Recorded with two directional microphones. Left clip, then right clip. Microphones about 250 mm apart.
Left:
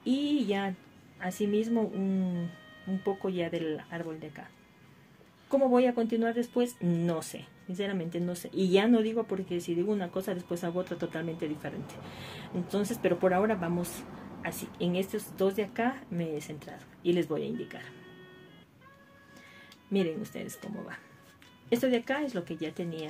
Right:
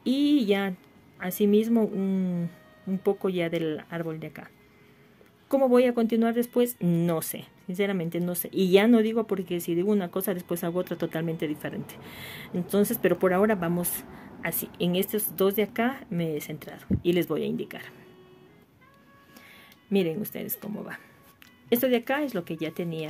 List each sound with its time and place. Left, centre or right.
0.0 s a sound: right
1.2 s speech: right
5.5 s speech: right
19.9 s speech: right
21.6 s speech: right